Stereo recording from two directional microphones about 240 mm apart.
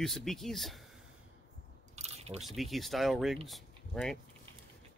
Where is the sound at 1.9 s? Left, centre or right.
Right.